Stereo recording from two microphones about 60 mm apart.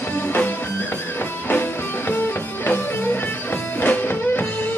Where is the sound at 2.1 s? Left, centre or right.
Left.